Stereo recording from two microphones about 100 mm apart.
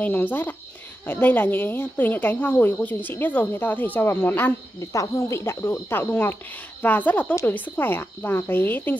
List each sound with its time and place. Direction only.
0.0 s speech: 15° left (ahead or behind)
4.7 s speech: 35° left (ahead or behind)